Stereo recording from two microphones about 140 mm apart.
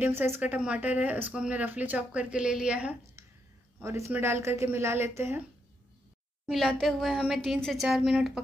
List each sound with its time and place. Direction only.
0.0 s speech: 15° right (ahead or behind)
4.1 s speech: 15° right (ahead or behind)
6.5 s a woman's voice: centre (ahead or behind)